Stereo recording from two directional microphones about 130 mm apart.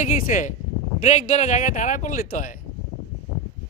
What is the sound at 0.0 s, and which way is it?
Speech, 75° left (ahead or behind).